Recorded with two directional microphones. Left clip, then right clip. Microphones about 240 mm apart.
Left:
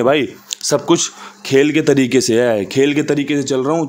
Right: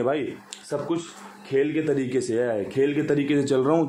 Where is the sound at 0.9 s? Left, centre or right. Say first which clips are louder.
Left 13 dB; left; by 3.9 s centre.